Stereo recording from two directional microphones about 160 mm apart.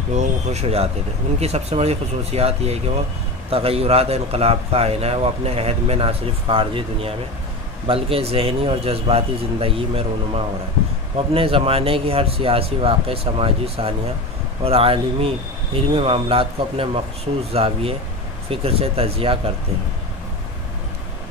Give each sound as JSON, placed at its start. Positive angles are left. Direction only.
{"t": 0.1, "sound": "a man's voice", "side_deg": -45}